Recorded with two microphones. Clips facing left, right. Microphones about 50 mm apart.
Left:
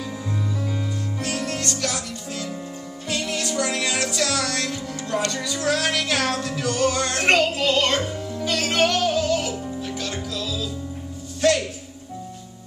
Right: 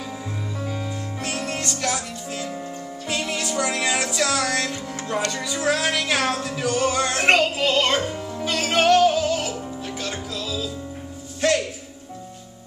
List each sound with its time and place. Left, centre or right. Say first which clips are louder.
1.2 s music: even; right